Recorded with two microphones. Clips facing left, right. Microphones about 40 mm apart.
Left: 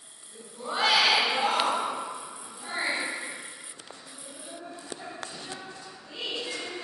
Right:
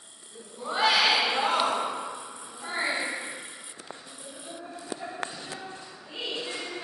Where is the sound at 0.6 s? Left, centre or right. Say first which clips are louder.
Even; centre.